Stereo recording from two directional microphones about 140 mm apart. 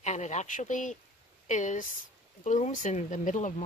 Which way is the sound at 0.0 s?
55° left (ahead or behind).